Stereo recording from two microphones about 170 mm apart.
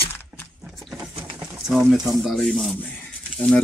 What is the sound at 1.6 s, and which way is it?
Speech, 5° right (ahead or behind).